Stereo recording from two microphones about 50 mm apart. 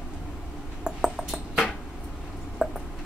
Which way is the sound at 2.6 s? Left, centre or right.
Centre.